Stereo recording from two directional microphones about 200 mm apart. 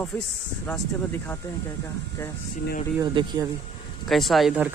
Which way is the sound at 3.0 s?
20° right (ahead or behind).